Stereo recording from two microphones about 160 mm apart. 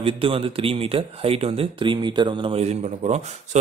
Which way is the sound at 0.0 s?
35° right (ahead or behind).